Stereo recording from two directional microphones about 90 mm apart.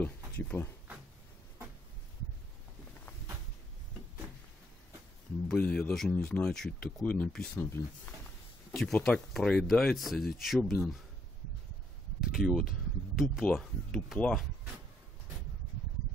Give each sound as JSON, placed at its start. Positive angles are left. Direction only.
{"t": 0.0, "sound": "a sound", "side_deg": 20}
{"t": 5.6, "sound": "speech", "side_deg": 15}
{"t": 8.7, "sound": "speech", "side_deg": 5}
{"t": 12.2, "sound": "speech", "side_deg": -5}